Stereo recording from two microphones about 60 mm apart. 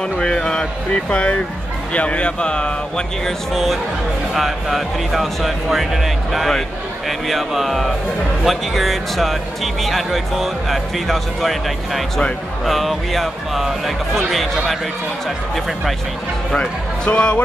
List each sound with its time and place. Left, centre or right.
0.2 s speech: centre
3.3 s speech: centre
16.5 s speech: centre